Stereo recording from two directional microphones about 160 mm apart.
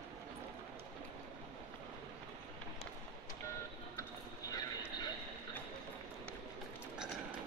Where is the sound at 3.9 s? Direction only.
20° left (ahead or behind).